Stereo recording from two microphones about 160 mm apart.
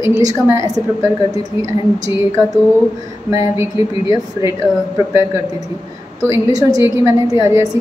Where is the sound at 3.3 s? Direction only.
20° right (ahead or behind).